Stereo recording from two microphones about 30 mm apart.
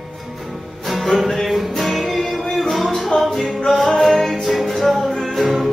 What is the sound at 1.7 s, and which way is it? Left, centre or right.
Music, centre.